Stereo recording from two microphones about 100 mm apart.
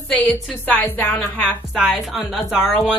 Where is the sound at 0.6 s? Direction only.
15° left (ahead or behind).